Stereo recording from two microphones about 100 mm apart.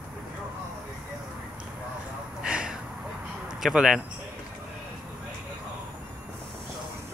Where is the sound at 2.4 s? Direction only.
10° right (ahead or behind).